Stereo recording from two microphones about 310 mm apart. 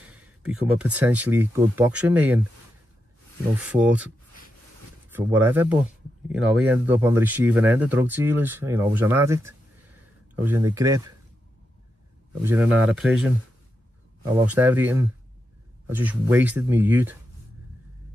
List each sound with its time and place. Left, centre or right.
0.0 s a sound: centre
0.5 s speech: centre
3.5 s speech: centre
5.1 s speech: centre
12.4 s speech: centre